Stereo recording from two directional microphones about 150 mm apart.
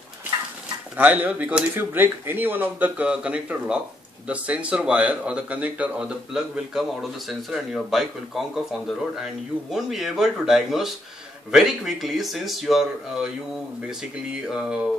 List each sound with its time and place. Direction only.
0.9 s speech: 10° right (ahead or behind)
14.5 s speech: 5° right (ahead or behind)